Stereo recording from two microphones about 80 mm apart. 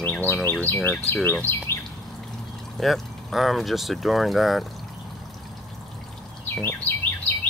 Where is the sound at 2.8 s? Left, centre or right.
Centre.